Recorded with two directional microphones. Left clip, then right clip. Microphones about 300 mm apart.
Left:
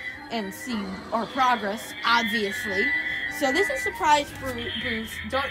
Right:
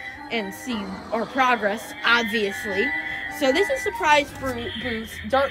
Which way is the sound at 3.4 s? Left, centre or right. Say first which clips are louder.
Right 4 dB; left.